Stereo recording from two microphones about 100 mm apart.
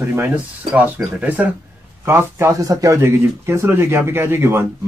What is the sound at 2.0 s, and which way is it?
Speech, 25° right (ahead or behind).